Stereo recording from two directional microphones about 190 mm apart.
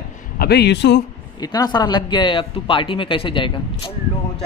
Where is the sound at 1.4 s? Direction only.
20° left (ahead or behind).